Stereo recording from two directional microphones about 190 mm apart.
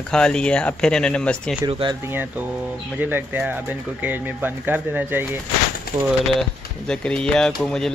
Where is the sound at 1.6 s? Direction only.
25° right (ahead or behind).